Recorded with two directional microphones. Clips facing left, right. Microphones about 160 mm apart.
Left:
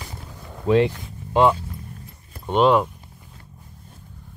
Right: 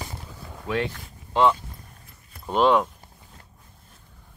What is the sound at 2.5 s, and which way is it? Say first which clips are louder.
Speech: left 3 dB; centre (ahead or behind).